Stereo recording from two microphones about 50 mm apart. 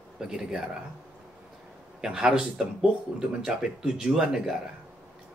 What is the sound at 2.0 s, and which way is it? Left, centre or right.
Speech, centre.